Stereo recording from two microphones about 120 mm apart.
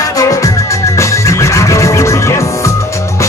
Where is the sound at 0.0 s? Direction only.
30° left (ahead or behind).